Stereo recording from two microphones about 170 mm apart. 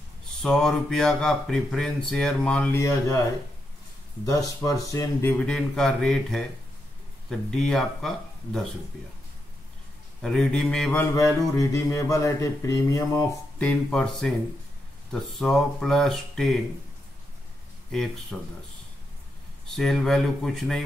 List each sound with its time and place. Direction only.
0.4 s speech: centre (ahead or behind)
4.6 s speech: 15° left (ahead or behind)
10.2 s mantra: 5° left (ahead or behind)
13.6 s speech: 5° left (ahead or behind)
15.3 s speech: centre (ahead or behind)
17.9 s speech: centre (ahead or behind)
19.7 s speech: centre (ahead or behind)